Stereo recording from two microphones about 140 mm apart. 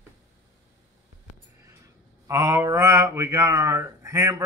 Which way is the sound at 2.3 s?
25° right (ahead or behind).